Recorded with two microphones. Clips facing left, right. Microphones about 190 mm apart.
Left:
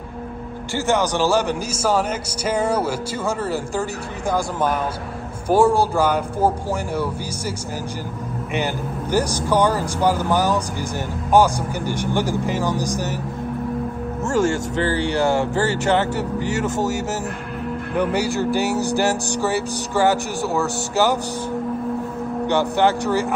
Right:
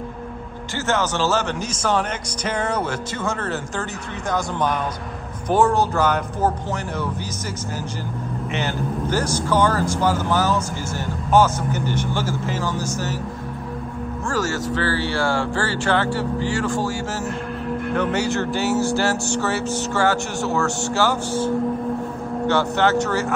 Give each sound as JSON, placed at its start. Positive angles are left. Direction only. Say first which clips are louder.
{"t": 0.8, "sound": "speech", "louder": "left 2 dB", "side_deg": 15}
{"t": 9.1, "sound": "speech", "louder": "left 3 dB", "side_deg": 15}
{"t": 14.2, "sound": "speech", "louder": "left 5 dB", "side_deg": 25}
{"t": 17.9, "sound": "speech", "louder": "left 2 dB", "side_deg": 10}
{"t": 22.5, "sound": "speech", "louder": "left 1 dB", "side_deg": 15}